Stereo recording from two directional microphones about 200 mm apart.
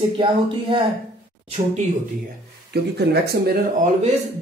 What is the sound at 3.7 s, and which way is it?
Speech, 35° right (ahead or behind).